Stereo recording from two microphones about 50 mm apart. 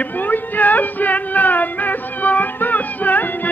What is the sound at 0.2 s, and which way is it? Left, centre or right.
Music, left.